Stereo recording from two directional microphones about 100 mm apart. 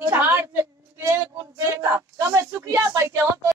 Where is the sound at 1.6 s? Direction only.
25° right (ahead or behind).